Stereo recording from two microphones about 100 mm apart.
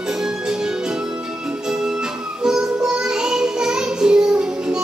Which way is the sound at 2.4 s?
5° right (ahead or behind).